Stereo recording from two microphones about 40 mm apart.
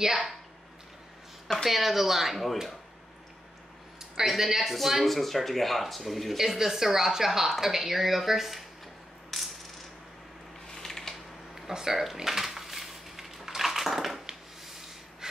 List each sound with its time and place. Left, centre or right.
1.7 s speech: centre
4.0 s speech: centre
9.3 s coin: centre
10.7 s a sound: centre
11.5 s a sound: centre
14.2 s snort: centre